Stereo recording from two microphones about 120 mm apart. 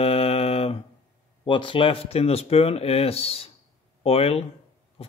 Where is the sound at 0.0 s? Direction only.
55° left (ahead or behind).